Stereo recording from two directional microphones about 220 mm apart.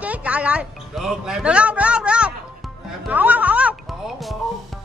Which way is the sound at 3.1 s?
5° right (ahead or behind).